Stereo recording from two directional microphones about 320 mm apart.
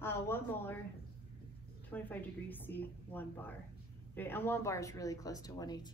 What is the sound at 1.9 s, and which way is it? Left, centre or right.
A woman's voice, centre.